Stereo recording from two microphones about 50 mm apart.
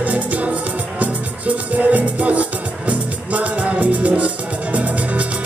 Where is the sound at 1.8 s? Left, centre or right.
Right.